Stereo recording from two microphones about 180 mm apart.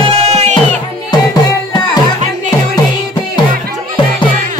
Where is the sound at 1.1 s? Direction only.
20° left (ahead or behind).